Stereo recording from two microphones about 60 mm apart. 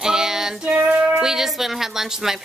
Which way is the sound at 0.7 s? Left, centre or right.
Right.